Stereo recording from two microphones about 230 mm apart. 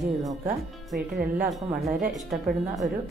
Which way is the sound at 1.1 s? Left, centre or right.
Right.